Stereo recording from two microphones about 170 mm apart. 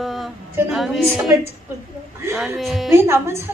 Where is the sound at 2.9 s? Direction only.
15° right (ahead or behind).